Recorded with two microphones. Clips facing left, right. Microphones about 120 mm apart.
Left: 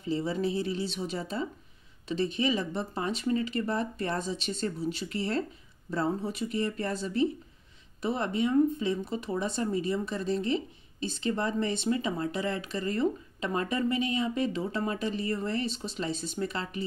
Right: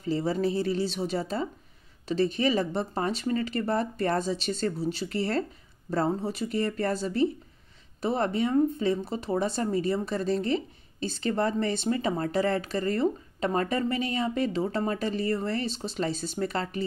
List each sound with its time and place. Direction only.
0.0 s speech: 40° right (ahead or behind)